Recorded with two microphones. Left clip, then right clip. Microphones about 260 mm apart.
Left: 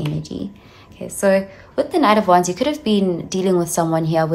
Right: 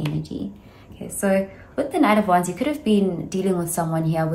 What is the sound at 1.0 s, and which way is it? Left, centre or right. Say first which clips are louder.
A woman's voice: left 5 dB; centre.